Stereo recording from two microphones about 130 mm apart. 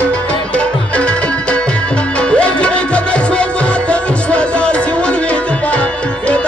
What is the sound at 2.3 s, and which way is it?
Music, 10° left (ahead or behind).